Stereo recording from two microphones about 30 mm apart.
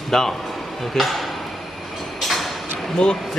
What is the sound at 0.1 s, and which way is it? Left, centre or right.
Speech, centre.